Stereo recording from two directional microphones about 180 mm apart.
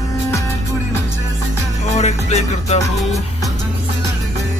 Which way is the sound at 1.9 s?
40° left (ahead or behind).